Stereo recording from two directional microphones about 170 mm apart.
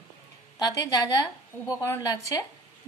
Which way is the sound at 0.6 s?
20° left (ahead or behind).